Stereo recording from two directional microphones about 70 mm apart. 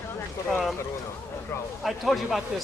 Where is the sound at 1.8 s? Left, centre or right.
Centre.